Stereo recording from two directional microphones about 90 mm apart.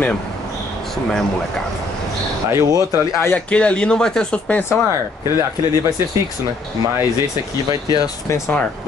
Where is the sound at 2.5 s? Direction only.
35° right (ahead or behind).